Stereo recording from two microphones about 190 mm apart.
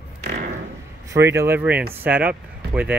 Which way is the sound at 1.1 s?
15° right (ahead or behind).